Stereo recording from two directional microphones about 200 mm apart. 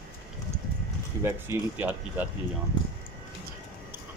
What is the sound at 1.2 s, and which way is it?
Speech, 10° right (ahead or behind).